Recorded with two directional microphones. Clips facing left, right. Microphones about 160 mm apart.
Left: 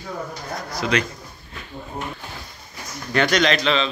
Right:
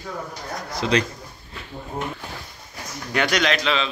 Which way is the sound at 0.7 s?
25° right (ahead or behind).